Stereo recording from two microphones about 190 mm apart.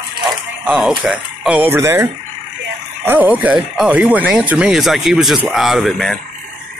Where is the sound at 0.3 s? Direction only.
5° right (ahead or behind).